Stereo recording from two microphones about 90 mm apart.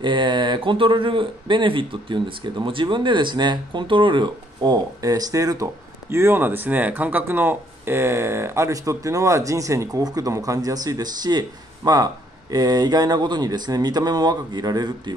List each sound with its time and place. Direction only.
0.0 s speech: 60° right (ahead or behind); by 5.7 s 40° right (ahead or behind)
6.0 s speech: 30° right (ahead or behind); by 15.1 s 45° right (ahead or behind)